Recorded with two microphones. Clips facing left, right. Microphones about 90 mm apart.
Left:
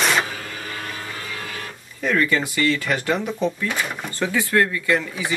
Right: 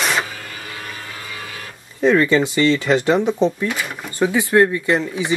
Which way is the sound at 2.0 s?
25° right (ahead or behind).